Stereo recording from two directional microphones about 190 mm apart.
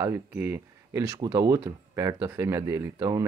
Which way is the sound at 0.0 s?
10° right (ahead or behind).